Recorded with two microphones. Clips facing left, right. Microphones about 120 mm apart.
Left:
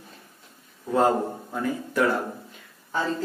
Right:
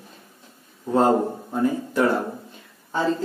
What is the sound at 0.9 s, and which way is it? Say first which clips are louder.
Speech: right 3 dB; 25° right (ahead or behind).